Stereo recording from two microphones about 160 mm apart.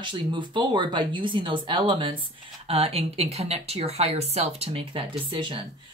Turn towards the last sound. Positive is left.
turn(degrees=-35)  # may be behind; listen again after turning